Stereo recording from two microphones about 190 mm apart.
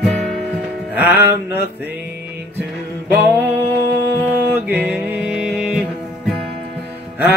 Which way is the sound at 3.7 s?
60° right (ahead or behind).